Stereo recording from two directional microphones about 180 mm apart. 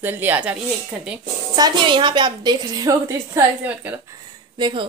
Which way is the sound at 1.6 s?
25° right (ahead or behind).